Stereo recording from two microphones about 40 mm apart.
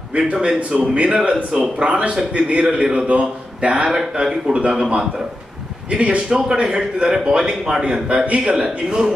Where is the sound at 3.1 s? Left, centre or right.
Right.